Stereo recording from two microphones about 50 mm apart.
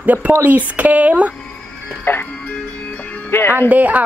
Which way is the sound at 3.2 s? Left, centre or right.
Left.